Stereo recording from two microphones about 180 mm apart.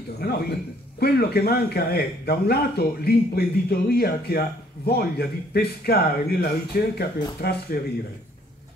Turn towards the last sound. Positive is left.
turn(degrees=60)  # may be behind; listen again after turning